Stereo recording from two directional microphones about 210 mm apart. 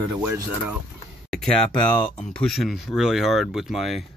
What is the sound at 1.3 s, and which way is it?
Speech, 5° left (ahead or behind).